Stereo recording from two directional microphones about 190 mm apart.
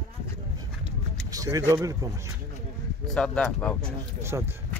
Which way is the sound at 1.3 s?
20° right (ahead or behind).